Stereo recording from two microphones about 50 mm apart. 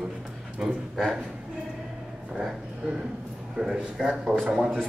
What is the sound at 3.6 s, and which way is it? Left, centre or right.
Speech, right.